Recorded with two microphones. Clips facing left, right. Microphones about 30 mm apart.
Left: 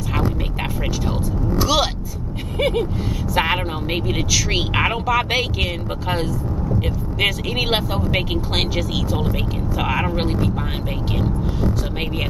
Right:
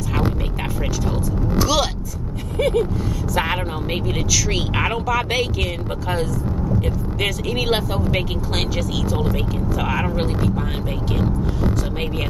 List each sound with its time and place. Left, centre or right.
1.6 s vehicle: centre
2.5 s a sound: left
3.3 s speech: centre